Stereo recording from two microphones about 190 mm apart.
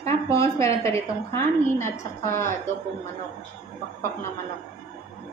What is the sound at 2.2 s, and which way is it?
Speech, 15° left (ahead or behind).